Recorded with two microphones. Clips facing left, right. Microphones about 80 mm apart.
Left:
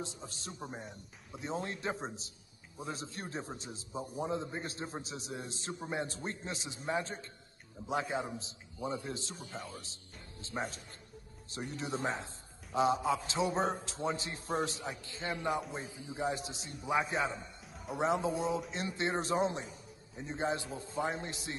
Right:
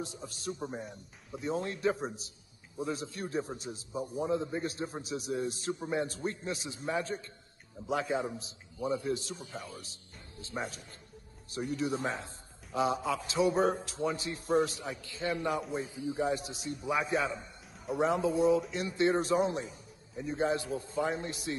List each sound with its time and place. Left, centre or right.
0.0 s a man's voice: left
11.7 s a man's voice: left